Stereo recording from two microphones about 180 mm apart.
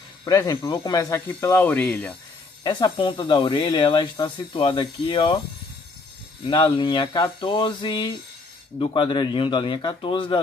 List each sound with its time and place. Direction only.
0.2 s speech: 20° left (ahead or behind)
2.6 s speech: 25° left (ahead or behind)
6.4 s speech: 25° left (ahead or behind)